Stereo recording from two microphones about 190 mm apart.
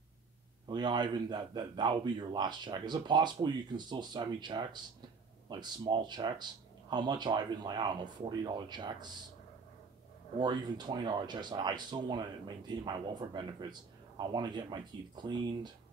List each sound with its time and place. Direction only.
0.7 s speech: 25° right (ahead or behind)
10.4 s speech: 25° right (ahead or behind)